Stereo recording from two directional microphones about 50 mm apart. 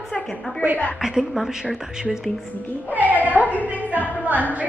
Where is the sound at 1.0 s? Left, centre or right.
Centre.